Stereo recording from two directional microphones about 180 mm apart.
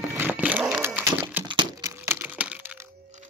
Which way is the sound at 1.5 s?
20° right (ahead or behind).